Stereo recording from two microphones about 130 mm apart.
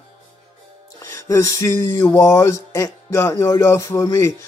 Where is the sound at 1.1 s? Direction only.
25° left (ahead or behind).